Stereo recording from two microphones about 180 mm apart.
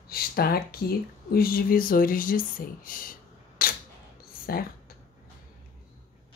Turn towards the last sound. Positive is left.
turn(degrees=60)  # may be behind; listen again after turning